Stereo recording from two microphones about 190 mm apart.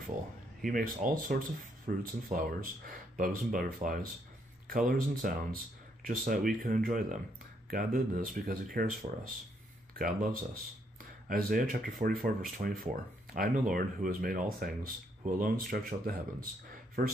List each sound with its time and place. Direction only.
0.6 s speech: 50° right (ahead or behind)
9.9 s speech: 45° right (ahead or behind)